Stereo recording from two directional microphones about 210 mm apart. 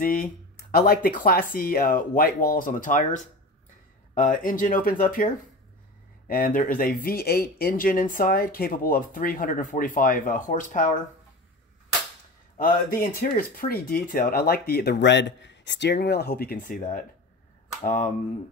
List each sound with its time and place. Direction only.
0.0 s speech: 40° left (ahead or behind)
12.5 s speech: 45° left (ahead or behind)